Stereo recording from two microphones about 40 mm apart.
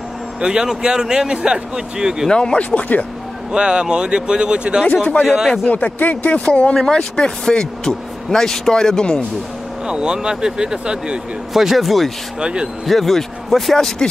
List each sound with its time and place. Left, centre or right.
0.4 s a man's voice: centre
2.2 s speech: left
2.7 s speech: left
3.5 s speech: right
5.2 s a man's voice: centre
5.7 s speech: left
6.4 s speech: left
9.8 s speech: right
11.5 s a man's voice: centre
12.4 s speech: right
12.8 s a man's voice: centre
13.7 s speech: centre